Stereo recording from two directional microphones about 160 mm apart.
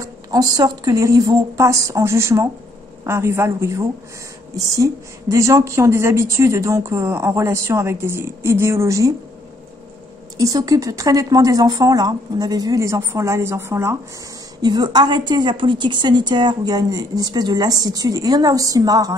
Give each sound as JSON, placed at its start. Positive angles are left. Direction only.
{"t": 0.0, "sound": "a woman's voice", "side_deg": -25}
{"t": 10.3, "sound": "a woman's voice", "side_deg": -20}